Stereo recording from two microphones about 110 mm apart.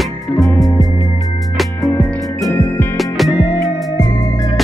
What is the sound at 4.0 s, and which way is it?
Music, 30° left (ahead or behind).